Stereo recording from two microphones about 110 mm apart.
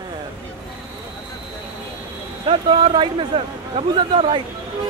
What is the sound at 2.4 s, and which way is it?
Speech, 45° right (ahead or behind).